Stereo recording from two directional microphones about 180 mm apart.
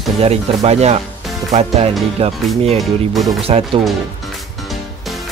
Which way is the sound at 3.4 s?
30° right (ahead or behind).